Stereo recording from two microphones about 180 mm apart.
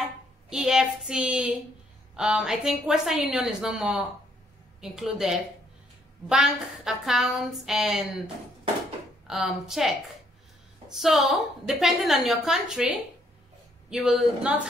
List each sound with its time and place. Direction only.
0.5 s a woman's voice: 5° right (ahead or behind)
9.3 s a woman's voice: centre (ahead or behind)
11.0 s a woman's voice: centre (ahead or behind)